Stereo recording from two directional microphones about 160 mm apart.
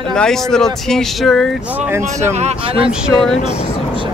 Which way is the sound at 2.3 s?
45° right (ahead or behind).